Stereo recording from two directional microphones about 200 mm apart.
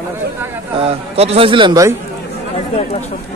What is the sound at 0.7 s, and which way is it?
A man's voice, 30° right (ahead or behind).